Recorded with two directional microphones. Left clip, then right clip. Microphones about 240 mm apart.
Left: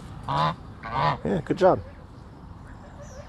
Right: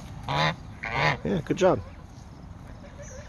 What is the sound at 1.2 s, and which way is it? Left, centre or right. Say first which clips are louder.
Speech: left 2 dB; centre.